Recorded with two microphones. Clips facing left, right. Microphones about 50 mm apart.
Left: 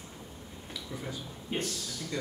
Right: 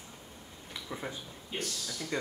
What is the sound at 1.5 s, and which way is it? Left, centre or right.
Speech, left.